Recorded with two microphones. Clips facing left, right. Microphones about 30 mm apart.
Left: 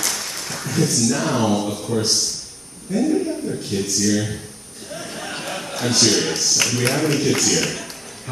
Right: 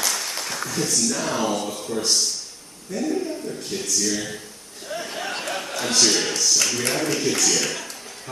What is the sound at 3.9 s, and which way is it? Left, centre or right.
Speech, centre.